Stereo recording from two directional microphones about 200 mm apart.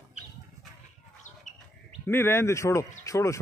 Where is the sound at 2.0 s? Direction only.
10° left (ahead or behind).